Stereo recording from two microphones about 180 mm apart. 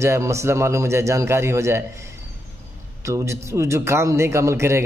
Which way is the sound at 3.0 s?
15° right (ahead or behind).